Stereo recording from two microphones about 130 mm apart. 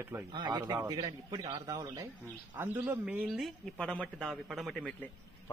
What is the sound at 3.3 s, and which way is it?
Speech, centre (ahead or behind).